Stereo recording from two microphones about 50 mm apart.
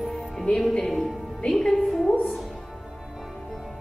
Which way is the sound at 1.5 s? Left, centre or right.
Centre.